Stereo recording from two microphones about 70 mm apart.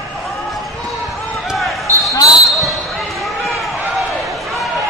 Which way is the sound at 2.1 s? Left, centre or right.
Left.